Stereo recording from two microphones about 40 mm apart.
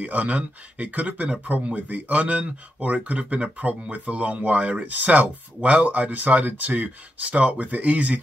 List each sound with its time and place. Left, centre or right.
0.0 s speech: right
7.2 s speech: right